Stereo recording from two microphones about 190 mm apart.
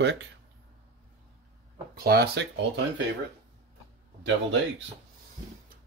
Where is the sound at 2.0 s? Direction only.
55° right (ahead or behind).